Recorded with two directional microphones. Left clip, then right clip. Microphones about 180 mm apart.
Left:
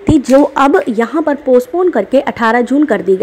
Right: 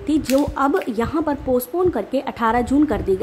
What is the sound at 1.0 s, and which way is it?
A woman's voice, 20° left (ahead or behind).